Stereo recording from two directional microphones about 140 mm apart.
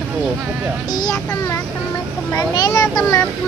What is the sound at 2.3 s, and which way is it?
Speech, 25° left (ahead or behind).